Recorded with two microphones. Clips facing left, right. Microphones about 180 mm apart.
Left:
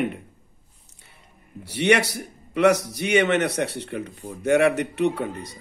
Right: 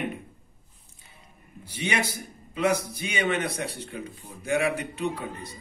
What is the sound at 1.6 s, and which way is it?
Speech, 70° left (ahead or behind).